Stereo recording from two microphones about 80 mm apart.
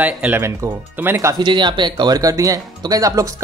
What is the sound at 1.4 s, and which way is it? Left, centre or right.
Speech, right.